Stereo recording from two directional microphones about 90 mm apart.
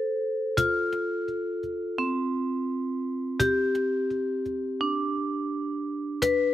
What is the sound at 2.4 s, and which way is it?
Music, 15° right (ahead or behind).